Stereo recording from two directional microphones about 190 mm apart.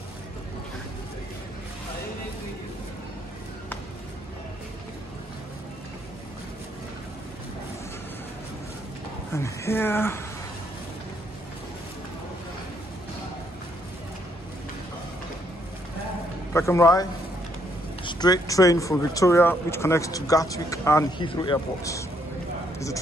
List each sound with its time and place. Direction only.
9.3 s speech: 15° left (ahead or behind)
16.5 s speech: 15° left (ahead or behind)